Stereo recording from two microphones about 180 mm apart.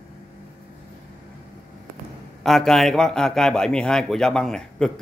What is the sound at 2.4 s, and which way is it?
A man's voice, centre (ahead or behind).